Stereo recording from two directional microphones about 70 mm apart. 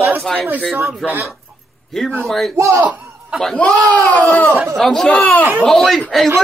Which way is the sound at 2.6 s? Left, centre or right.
Right.